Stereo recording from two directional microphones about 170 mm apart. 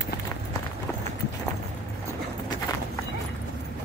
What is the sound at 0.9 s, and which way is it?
Run, 10° left (ahead or behind).